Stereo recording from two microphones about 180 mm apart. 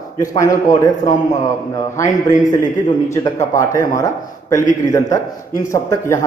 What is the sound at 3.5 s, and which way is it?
A man's voice, 15° left (ahead or behind).